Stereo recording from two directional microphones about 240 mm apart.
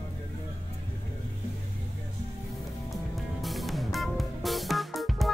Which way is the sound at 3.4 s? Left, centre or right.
Centre.